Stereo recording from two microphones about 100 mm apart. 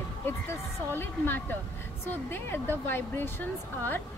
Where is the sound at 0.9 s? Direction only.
20° left (ahead or behind).